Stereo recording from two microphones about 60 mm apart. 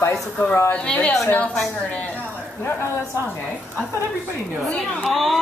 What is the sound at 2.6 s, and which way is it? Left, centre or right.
Speech, left.